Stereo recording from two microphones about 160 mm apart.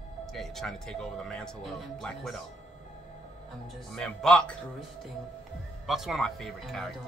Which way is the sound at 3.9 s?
5° left (ahead or behind).